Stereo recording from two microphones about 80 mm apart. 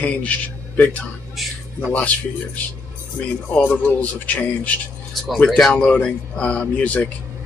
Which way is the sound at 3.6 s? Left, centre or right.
Left.